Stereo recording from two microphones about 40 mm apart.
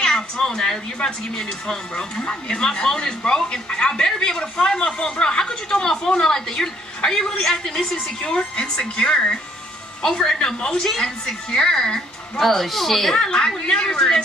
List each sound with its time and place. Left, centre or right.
0.0 s a sound: centre
1.0 s speech: centre
12.4 s speech: centre
13.1 s speech: centre